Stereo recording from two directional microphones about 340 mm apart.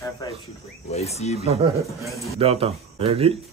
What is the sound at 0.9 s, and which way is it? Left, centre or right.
Speech, centre.